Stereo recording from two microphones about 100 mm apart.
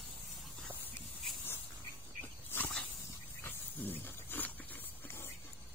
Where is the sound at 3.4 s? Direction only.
20° left (ahead or behind).